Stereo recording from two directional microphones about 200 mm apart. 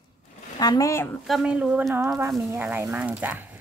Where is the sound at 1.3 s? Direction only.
Centre (ahead or behind).